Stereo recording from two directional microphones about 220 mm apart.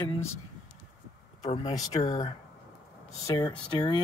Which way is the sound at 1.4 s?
25° left (ahead or behind).